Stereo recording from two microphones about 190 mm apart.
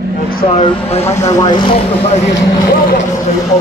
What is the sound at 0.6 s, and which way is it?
Speech, 30° left (ahead or behind).